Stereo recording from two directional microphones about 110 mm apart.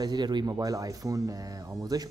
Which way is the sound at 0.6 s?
30° right (ahead or behind).